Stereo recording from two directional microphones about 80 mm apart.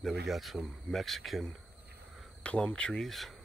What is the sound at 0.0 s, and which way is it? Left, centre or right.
Speech, centre.